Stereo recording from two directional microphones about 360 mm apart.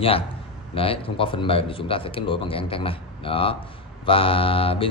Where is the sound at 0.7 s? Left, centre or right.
Centre.